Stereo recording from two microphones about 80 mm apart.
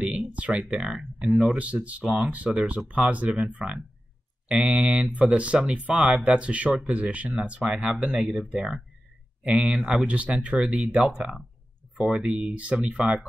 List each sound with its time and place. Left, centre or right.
0.0 s speech: centre